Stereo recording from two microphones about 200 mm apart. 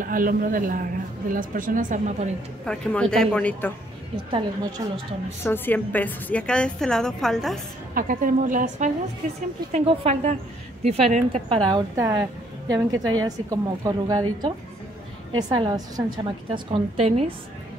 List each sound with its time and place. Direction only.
0.0 s speech: 45° right (ahead or behind)
2.6 s a woman's voice: 5° left (ahead or behind)
4.3 s a woman's voice: 25° right (ahead or behind)
5.4 s a woman's voice: 10° left (ahead or behind)
7.9 s a woman's voice: 45° right (ahead or behind)